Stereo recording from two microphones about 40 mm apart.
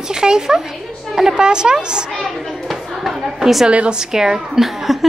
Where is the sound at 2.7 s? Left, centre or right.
Centre.